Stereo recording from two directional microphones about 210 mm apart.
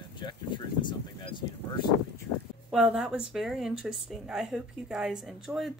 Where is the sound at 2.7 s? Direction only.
Centre (ahead or behind).